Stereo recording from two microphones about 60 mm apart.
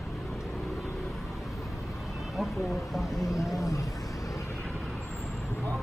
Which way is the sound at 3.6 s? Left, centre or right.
Left.